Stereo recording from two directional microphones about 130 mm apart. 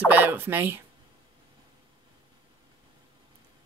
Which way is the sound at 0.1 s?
15° right (ahead or behind).